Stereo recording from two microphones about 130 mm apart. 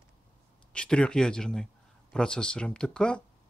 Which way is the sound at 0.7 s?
5° left (ahead or behind).